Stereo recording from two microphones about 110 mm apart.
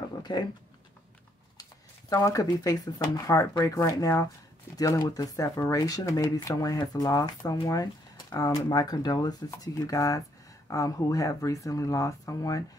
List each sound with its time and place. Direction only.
0.2 s speech: 40° left (ahead or behind)
1.6 s speech: 35° left (ahead or behind)